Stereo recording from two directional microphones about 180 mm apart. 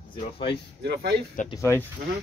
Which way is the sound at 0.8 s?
65° right (ahead or behind).